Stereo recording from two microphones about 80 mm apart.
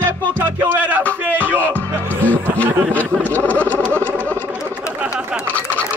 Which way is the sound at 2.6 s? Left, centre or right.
Right.